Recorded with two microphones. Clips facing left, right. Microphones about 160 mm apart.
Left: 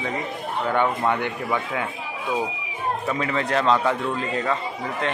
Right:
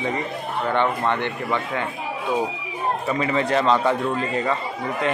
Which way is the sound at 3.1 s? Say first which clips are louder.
Right 3 dB; centre (ahead or behind).